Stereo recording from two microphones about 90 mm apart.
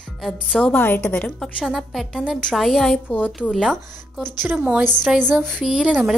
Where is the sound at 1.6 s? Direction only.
5° right (ahead or behind); by 3.3 s 15° left (ahead or behind).